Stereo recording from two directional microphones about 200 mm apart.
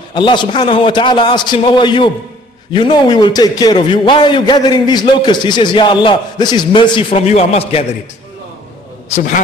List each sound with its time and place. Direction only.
0.1 s a man's voice: 20° left (ahead or behind)
9.1 s a man's voice: 40° left (ahead or behind)